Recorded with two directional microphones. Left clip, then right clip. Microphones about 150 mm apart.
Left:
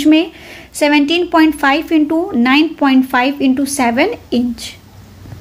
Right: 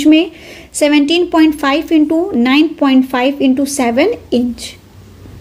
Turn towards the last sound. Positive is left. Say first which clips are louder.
# right 2 dB
turn(degrees=-5)  # may be behind; listen again after turning